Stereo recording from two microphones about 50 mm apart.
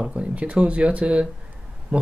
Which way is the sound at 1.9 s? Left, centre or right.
Centre.